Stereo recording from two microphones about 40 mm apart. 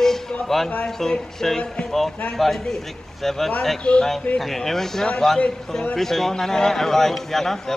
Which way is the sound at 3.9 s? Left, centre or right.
Left.